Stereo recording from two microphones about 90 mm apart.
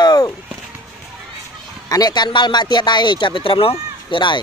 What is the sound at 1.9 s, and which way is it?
Speech, 50° left (ahead or behind).